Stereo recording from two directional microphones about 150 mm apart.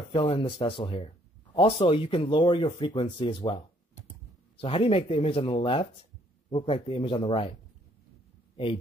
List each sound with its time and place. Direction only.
0.1 s speech: 35° left (ahead or behind)